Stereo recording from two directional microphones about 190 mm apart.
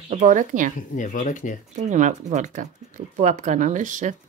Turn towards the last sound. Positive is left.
turn(degrees=-40)  # may be behind; listen again after turning